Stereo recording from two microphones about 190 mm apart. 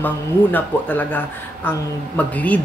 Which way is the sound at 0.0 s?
10° left (ahead or behind).